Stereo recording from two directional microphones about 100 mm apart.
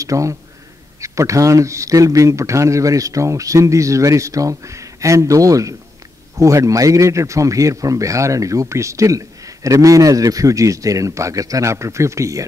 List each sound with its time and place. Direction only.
0.0 s speech: 30° right (ahead or behind)